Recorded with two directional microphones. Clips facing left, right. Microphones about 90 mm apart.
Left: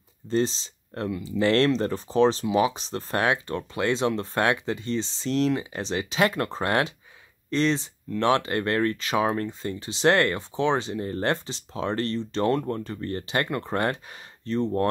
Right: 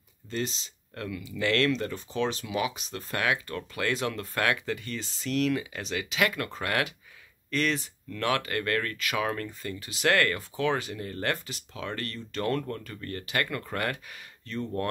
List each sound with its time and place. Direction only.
0.3 s speech: 30° left (ahead or behind)